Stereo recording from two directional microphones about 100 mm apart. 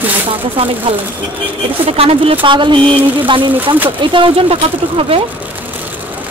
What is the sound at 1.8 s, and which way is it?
A man's voice, 70° right (ahead or behind).